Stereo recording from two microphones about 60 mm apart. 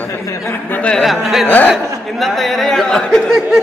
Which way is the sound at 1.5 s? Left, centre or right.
Left.